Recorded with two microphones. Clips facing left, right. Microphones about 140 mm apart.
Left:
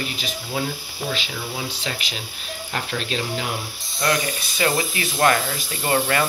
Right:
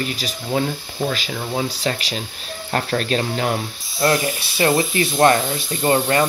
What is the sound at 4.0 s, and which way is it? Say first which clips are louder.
Speech: right 4 dB; 30° right (ahead or behind).